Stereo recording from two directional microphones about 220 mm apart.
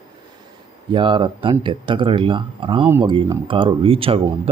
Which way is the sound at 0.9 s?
20° right (ahead or behind).